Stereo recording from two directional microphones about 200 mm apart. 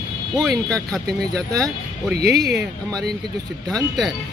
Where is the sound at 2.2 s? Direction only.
55° right (ahead or behind).